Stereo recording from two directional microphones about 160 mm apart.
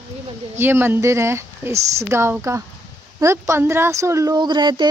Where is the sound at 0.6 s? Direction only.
15° right (ahead or behind).